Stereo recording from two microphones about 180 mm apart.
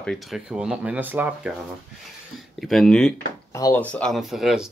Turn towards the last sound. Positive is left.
turn(degrees=0)  # may be behind; listen again after turning